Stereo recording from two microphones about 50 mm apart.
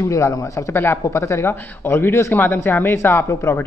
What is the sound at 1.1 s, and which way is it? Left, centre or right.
A man's voice, left.